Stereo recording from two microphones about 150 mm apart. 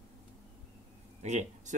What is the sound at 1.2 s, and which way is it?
Speech, 50° right (ahead or behind).